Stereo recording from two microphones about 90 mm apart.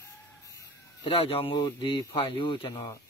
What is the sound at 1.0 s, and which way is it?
Speech, 90° left.